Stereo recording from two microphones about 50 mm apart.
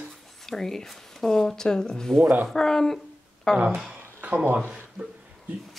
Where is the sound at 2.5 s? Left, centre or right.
Centre.